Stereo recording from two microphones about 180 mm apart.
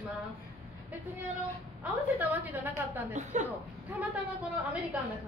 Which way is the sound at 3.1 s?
40° right (ahead or behind).